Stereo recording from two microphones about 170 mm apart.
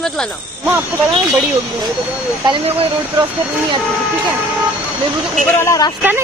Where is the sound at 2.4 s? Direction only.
35° right (ahead or behind).